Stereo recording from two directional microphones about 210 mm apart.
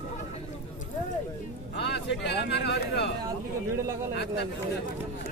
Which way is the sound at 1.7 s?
55° left (ahead or behind).